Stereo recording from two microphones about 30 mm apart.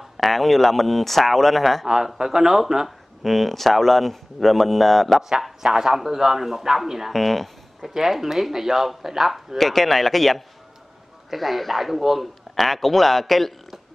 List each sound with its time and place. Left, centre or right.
0.2 s a man's voice: centre
1.9 s speech: centre
3.2 s a man's voice: centre
5.6 s speech: centre
7.1 s speech: centre
7.9 s speech: centre
9.6 s a man's voice: centre